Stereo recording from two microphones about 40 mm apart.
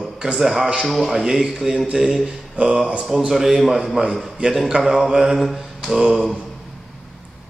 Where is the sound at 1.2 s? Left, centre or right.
Centre.